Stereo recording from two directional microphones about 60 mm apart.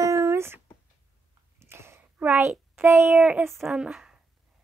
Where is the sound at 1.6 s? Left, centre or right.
Right.